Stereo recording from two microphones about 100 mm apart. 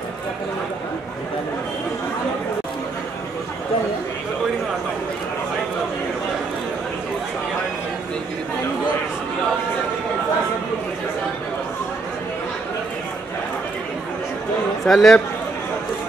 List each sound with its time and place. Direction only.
14.9 s speech: 5° left (ahead or behind)